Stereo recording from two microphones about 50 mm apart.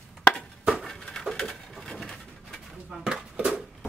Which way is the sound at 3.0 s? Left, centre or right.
Centre.